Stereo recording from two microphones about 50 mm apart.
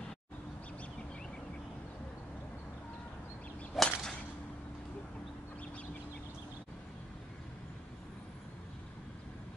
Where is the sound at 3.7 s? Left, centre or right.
Centre.